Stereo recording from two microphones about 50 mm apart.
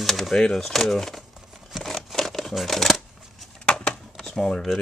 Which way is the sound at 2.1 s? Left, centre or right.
Centre.